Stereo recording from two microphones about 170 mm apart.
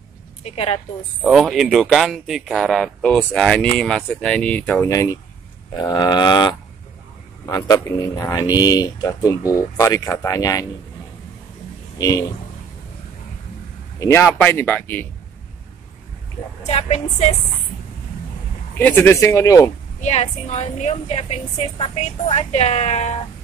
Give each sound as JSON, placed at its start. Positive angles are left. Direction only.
{"t": 0.4, "sound": "a woman's voice", "side_deg": 35}
{"t": 1.2, "sound": "speech", "side_deg": 0}
{"t": 4.8, "sound": "speech", "side_deg": 20}
{"t": 12.0, "sound": "speech", "side_deg": 20}
{"t": 13.9, "sound": "speech", "side_deg": 15}
{"t": 16.6, "sound": "a woman's voice", "side_deg": 40}
{"t": 18.8, "sound": "speech", "side_deg": 10}
{"t": 20.0, "sound": "a woman's voice", "side_deg": 40}